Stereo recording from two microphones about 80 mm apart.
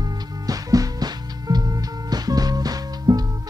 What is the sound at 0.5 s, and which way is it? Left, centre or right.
Music, right.